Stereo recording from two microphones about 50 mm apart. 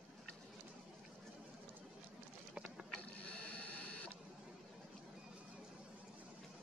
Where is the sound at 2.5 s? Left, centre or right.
Right.